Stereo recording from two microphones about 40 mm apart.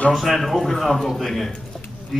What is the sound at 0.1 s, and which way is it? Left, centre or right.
Speech, centre.